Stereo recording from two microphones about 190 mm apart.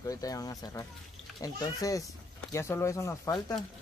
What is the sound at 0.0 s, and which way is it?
Speech, 20° left (ahead or behind).